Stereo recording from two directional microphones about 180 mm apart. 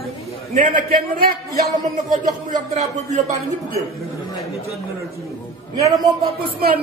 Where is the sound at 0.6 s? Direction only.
50° right (ahead or behind).